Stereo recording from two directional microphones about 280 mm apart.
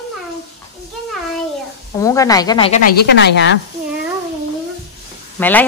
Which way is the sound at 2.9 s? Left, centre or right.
Left.